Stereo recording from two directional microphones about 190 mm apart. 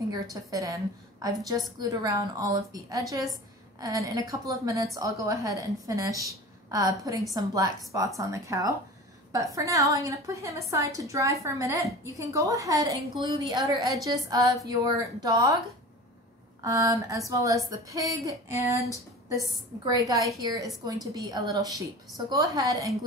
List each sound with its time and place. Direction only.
0.1 s a woman's voice: 20° right (ahead or behind)
16.6 s a woman's voice: 15° right (ahead or behind)